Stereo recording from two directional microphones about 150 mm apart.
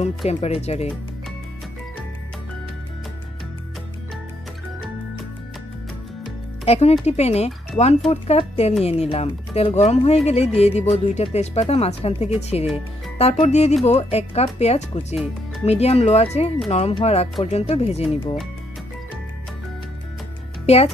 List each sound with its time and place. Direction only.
0.0 s speech: 45° left (ahead or behind)
6.6 s speech: 45° left (ahead or behind)
20.6 s speech: 45° left (ahead or behind)